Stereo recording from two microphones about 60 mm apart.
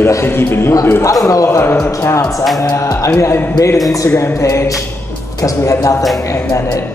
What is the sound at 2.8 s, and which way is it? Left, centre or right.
Speech, left.